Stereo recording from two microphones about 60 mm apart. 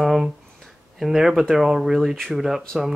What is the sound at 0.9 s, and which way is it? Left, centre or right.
Speech, centre.